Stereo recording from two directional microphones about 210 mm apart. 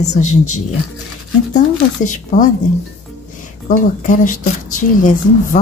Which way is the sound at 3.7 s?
40° left (ahead or behind).